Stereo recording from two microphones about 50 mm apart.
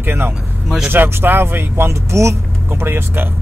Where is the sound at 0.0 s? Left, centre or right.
Right.